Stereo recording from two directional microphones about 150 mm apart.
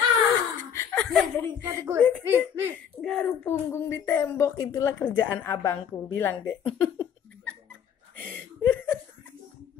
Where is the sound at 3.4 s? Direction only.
15° left (ahead or behind).